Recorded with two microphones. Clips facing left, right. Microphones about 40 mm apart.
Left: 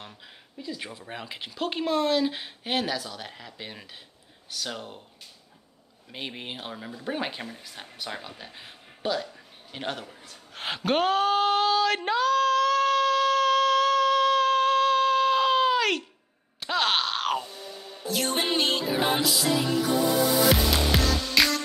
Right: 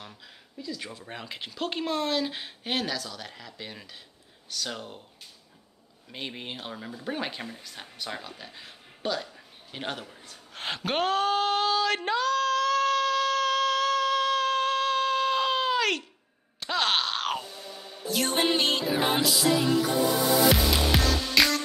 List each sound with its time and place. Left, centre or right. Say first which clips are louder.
0.6 s speech: left 1 dB; left
0.8 s speech: left 1 dB; centre
6.1 s speech: left 1 dB; centre
10.2 s a sound: left 1 dB; centre
16.5 s groan: left 1 dB; centre
18.0 s speech: right 1 dB; centre
20.4 s music: even; centre